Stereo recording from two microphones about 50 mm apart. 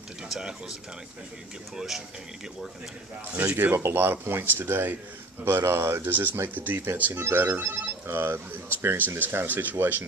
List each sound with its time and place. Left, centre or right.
0.3 s speech: centre
1.8 s speech: centre
3.4 s speech: right
3.7 s speech: right
7.2 s speech: right
9.2 s speech: right
9.5 s speech: right